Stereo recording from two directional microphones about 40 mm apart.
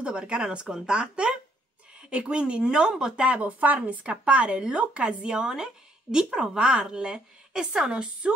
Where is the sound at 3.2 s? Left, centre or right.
Right.